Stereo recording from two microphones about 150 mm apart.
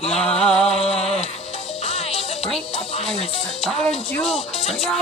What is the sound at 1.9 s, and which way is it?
Music, 45° left (ahead or behind).